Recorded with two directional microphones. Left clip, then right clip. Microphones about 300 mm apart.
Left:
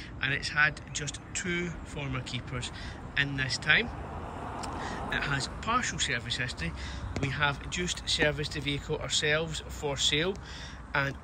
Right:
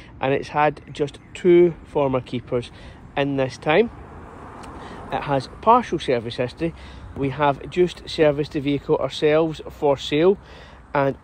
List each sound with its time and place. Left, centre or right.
0.2 s speech: centre